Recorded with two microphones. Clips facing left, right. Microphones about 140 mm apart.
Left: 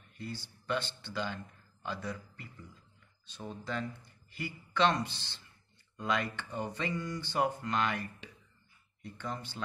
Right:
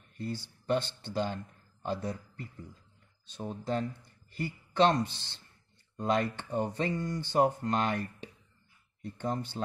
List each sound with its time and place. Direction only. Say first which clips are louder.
0.2 s a man's voice: right 5 dB; 40° right (ahead or behind)